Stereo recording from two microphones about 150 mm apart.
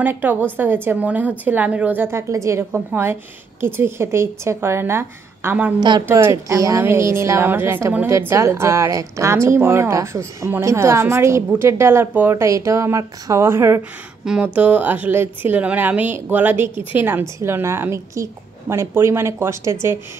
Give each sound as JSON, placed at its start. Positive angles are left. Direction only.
{"t": 0.0, "sound": "a woman's voice", "side_deg": -10}
{"t": 5.8, "sound": "a woman's voice", "side_deg": -30}